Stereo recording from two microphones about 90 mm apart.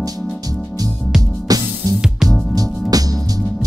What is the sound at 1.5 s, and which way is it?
Music, 45° right (ahead or behind).